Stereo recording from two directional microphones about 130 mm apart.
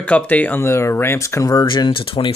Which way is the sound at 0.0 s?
10° left (ahead or behind).